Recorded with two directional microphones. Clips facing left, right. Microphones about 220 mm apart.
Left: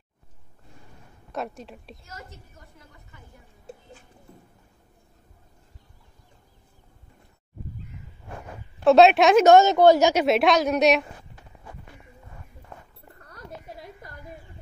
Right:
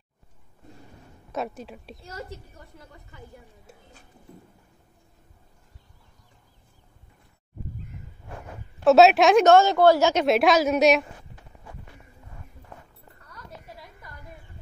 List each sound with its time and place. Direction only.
1.3 s a woman's voice: centre (ahead or behind)
2.0 s a woman's voice: 35° right (ahead or behind)
8.8 s a woman's voice: centre (ahead or behind)
9.5 s a woman's voice: 20° left (ahead or behind)
10.2 s a woman's voice: centre (ahead or behind)